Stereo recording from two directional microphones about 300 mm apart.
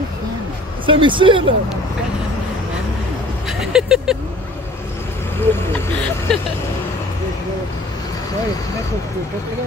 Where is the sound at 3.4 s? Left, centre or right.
Centre.